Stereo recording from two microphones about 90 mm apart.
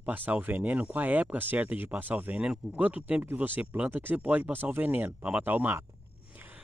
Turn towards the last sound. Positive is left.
turn(degrees=-20)  # may be behind; listen again after turning